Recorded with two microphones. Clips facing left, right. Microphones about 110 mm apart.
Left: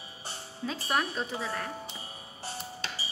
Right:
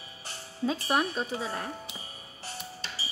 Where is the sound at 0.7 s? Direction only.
20° right (ahead or behind).